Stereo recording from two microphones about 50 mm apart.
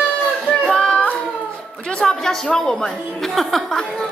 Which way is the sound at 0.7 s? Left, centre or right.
Centre.